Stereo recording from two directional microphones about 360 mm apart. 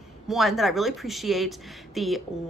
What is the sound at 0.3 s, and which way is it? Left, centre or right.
A woman's voice, centre.